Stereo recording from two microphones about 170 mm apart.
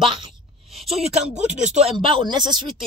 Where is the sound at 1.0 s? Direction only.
40° right (ahead or behind).